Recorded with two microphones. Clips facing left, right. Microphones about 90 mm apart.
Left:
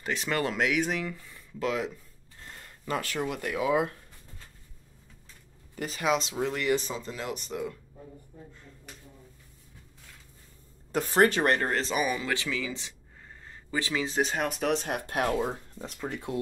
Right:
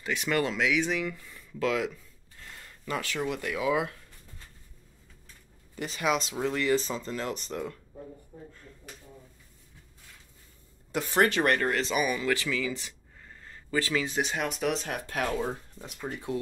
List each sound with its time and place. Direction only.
0.0 s speech: 35° left (ahead or behind)
0.5 s speech: 45° left (ahead or behind); by 1.9 s 25° left (ahead or behind)
2.4 s a sound: 40° left (ahead or behind)
3.3 s speech: 45° left (ahead or behind)
5.8 s speech: 35° left (ahead or behind)
6.9 s speech: 10° left (ahead or behind)
10.9 s speech: 35° left (ahead or behind)
13.5 s a sound: 20° left (ahead or behind)
14.1 s speech: 40° left (ahead or behind)
15.4 s speech: 25° left (ahead or behind)